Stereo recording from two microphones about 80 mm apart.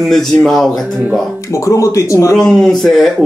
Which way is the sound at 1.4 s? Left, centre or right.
Left.